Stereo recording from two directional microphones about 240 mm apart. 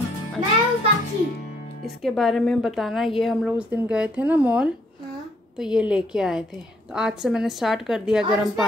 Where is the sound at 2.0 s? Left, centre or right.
Centre.